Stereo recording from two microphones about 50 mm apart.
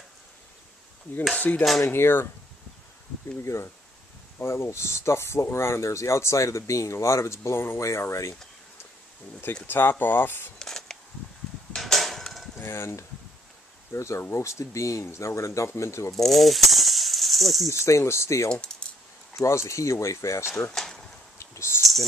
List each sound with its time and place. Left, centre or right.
1.5 s cutlery: left
1.9 s speech: left
3.4 s speech: left
9.7 s speech: left
10.6 s a sound: centre
12.5 s cutlery: left
13.9 s speech: left
16.2 s rattle: centre
17.6 s speech: left
19.3 s speech: left
20.7 s insect: centre
21.4 s a sound: left